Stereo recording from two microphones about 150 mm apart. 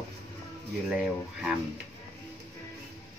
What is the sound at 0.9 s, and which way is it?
Speech, 5° right (ahead or behind).